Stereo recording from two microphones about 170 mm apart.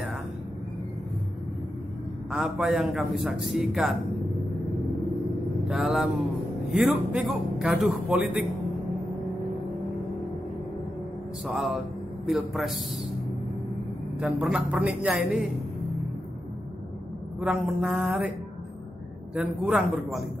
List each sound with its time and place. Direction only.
2.3 s a man's voice: 5° right (ahead or behind)
5.7 s a man's voice: centre (ahead or behind)
11.4 s a man's voice: centre (ahead or behind)
14.2 s a man's voice: 5° right (ahead or behind)
17.4 s a man's voice: 5° right (ahead or behind)
19.3 s a man's voice: 5° right (ahead or behind)